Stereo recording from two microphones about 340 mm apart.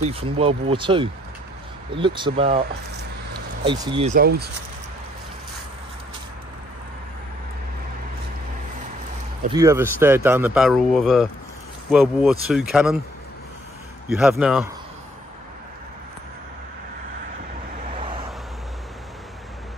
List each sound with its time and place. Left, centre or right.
0.4 s speech: centre
3.6 s speech: centre
9.4 s speech: centre
14.0 s speech: centre